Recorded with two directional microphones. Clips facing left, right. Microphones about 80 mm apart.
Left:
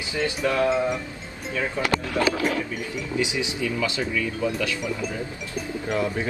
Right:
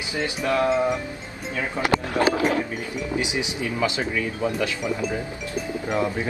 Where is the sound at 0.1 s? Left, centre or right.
Right.